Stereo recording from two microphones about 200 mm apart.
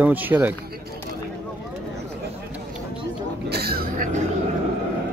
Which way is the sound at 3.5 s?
50° right (ahead or behind).